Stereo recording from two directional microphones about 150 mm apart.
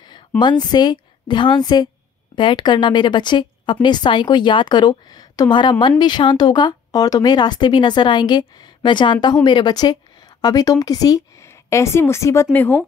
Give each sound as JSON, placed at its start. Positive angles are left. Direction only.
{"t": 0.4, "sound": "a woman's voice", "side_deg": 30}